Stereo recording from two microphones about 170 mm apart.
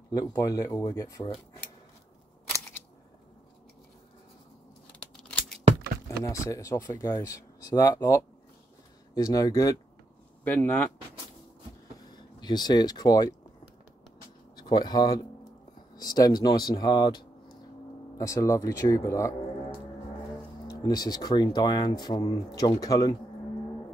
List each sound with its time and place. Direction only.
0.1 s speech: 20° left (ahead or behind)
6.0 s speech: 20° left (ahead or behind)
10.4 s speech: 10° left (ahead or behind)
12.1 s speech: 25° left (ahead or behind)
14.5 s speech: 25° left (ahead or behind)
20.6 s speech: 20° left (ahead or behind)